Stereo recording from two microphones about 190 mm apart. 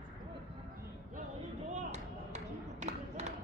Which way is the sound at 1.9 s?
35° right (ahead or behind).